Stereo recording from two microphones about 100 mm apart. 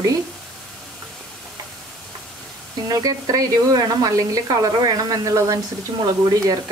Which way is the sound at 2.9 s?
40° right (ahead or behind).